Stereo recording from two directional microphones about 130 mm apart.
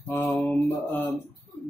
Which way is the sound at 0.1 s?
15° left (ahead or behind).